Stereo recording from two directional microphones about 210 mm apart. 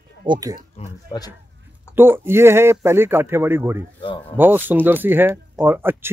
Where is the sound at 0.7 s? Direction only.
20° left (ahead or behind).